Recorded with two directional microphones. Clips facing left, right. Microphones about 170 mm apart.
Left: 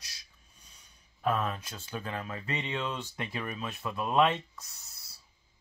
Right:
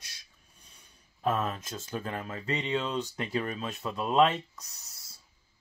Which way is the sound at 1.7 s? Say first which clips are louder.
Right 2 dB; 45° right (ahead or behind).